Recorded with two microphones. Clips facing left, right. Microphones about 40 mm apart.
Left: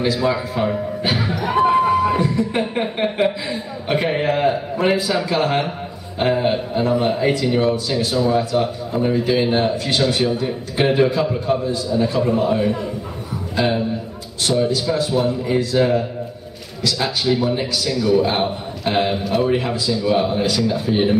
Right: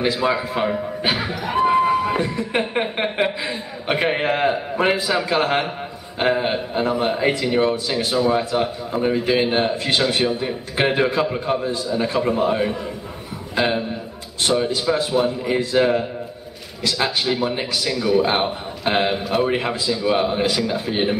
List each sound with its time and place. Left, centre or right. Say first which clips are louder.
0.0 s a man's voice: left 1 dB; centre
1.4 s a sound: left 2 dB; centre
2.1 s a man's voice: left 2 dB; centre